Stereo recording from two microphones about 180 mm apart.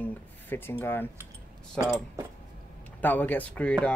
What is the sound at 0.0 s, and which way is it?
Speech, 10° left (ahead or behind).